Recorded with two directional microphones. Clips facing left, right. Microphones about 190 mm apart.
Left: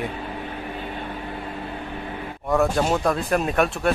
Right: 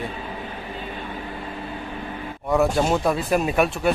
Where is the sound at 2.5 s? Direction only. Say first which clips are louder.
Right 1 dB; centre (ahead or behind).